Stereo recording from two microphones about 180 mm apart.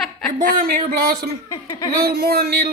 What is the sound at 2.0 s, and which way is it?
Speech, 60° right (ahead or behind).